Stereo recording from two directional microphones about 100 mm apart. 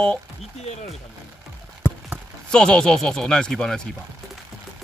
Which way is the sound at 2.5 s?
10° left (ahead or behind).